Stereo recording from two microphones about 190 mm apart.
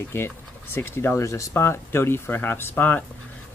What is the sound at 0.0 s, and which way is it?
Speech, 10° left (ahead or behind).